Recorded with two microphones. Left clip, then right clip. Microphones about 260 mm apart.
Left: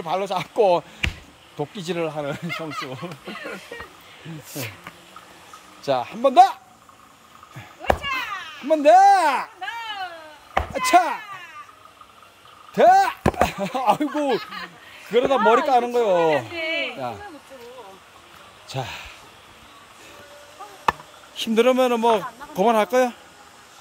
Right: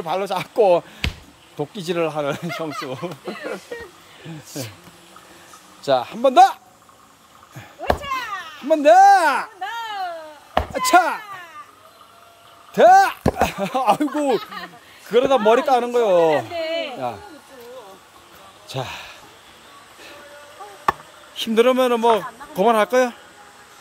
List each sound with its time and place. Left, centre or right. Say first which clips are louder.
0.0 s a man's voice: right 1 dB; centre
3.0 s speech: right 4 dB; right
5.9 s a man's voice: right 3 dB; centre
8.0 s a sound: right 1 dB; right
8.6 s a man's voice: right 2 dB; centre
9.6 s babbling: right 3 dB; right
10.5 s chop: right 2 dB; centre
12.7 s speech: right 3 dB; centre
14.1 s speech: right 2 dB; right
15.0 s a man's voice: right 2 dB; centre
16.3 s a sound: right 2 dB; right
18.7 s speech: right 2 dB; centre
21.4 s a man's voice: right 2 dB; centre